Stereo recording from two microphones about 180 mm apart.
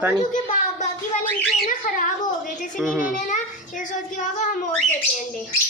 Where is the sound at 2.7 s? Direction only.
5° left (ahead or behind).